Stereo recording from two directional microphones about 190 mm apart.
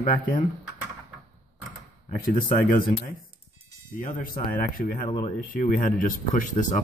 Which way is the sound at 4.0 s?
45° left (ahead or behind).